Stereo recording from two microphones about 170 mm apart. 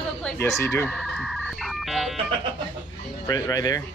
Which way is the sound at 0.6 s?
15° left (ahead or behind).